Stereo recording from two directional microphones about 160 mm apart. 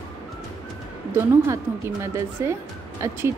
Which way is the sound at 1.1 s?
15° right (ahead or behind).